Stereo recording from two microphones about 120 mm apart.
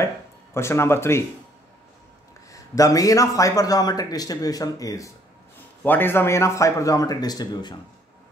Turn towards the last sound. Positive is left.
turn(degrees=35)  # may be behind; listen again after turning